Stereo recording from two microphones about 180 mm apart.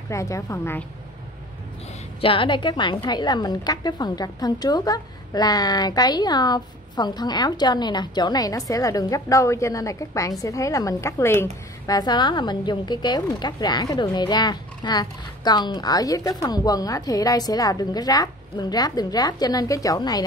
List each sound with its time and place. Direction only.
0.1 s speech: 15° left (ahead or behind)
2.2 s speech: 30° left (ahead or behind)